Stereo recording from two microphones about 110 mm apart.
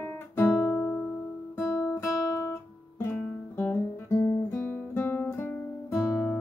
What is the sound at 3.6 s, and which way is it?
Guitar, 20° left (ahead or behind).